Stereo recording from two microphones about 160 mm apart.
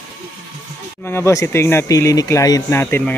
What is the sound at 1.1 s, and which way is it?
Speech, 15° left (ahead or behind).